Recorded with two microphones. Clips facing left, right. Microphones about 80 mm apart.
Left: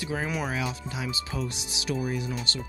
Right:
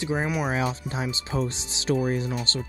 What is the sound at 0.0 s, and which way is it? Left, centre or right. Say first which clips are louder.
Speech: right 4 dB; right.